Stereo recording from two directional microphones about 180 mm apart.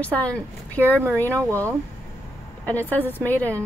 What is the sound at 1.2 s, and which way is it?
Speech, 15° right (ahead or behind).